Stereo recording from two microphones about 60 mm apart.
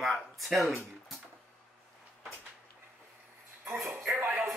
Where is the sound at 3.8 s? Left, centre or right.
Right.